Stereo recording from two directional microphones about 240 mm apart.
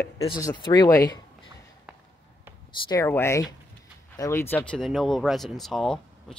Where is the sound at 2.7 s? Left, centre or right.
Centre.